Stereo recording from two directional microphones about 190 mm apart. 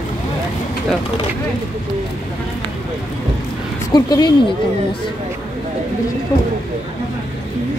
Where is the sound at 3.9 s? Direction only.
20° left (ahead or behind).